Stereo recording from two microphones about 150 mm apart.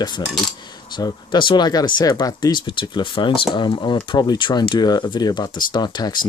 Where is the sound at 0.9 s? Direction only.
30° left (ahead or behind).